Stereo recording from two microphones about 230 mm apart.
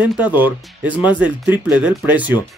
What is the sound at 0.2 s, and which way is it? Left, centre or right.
Speech, centre.